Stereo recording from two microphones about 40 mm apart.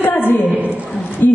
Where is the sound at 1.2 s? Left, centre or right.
Left.